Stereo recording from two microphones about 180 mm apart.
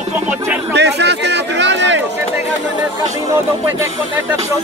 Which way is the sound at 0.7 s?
70° right (ahead or behind).